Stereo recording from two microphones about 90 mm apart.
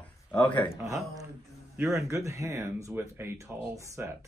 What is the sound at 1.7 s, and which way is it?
Speech, 35° right (ahead or behind).